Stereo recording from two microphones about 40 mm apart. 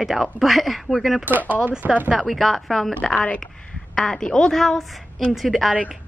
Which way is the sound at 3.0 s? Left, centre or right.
Centre.